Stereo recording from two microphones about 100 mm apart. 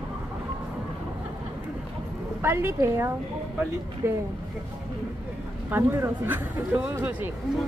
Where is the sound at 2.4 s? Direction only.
25° right (ahead or behind).